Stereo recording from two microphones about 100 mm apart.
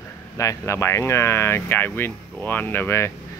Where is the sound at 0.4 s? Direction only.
30° left (ahead or behind).